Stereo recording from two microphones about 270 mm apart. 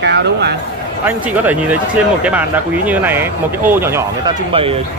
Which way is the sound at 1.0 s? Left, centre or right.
Centre.